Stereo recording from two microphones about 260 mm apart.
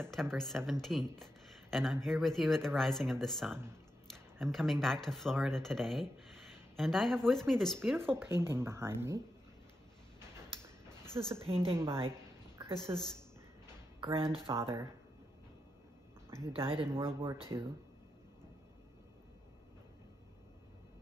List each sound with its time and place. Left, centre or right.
0.1 s speech: centre
11.4 s speech: right
11.7 s speech: centre
12.6 s a sound: centre
14.0 s speech: right
14.5 s speech: centre
16.5 s speech: right